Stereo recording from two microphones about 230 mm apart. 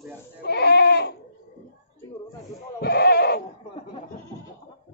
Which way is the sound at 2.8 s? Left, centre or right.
Left.